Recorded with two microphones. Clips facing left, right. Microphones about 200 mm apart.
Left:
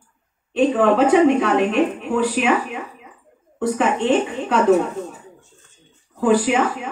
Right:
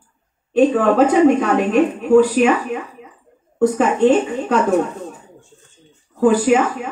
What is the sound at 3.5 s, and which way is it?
Speech, 45° right (ahead or behind).